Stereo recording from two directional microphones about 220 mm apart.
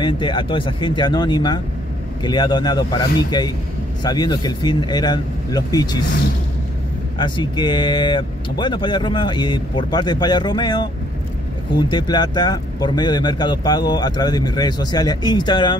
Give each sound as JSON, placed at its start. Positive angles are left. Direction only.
{"t": 0.0, "sound": "speech", "side_deg": 20}
{"t": 7.2, "sound": "speech", "side_deg": 20}
{"t": 11.9, "sound": "speech", "side_deg": 20}